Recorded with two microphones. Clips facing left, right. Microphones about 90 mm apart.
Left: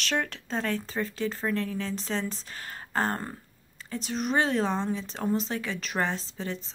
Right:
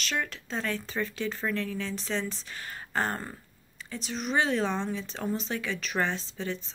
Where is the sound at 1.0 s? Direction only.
30° left (ahead or behind).